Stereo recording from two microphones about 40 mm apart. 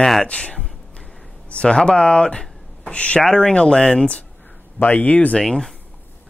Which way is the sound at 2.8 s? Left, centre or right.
Left.